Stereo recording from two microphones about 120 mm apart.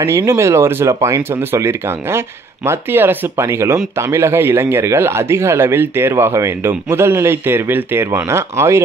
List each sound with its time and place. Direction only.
0.0 s speech: 25° right (ahead or behind)